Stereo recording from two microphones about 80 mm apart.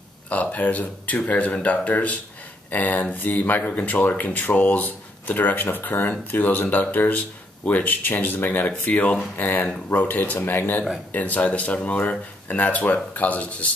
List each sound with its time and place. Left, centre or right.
0.3 s speech: centre